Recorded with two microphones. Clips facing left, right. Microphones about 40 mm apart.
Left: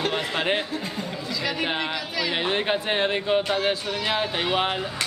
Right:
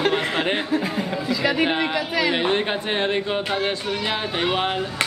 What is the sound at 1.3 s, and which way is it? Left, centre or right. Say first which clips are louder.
A child's voice: right 6 dB; centre.